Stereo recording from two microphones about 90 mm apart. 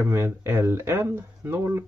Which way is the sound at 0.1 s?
30° right (ahead or behind).